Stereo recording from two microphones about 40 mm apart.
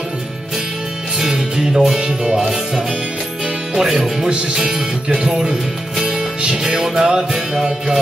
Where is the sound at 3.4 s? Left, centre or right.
Centre.